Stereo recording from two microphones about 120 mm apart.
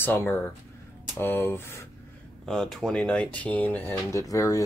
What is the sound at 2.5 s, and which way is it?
Speech, 5° left (ahead or behind).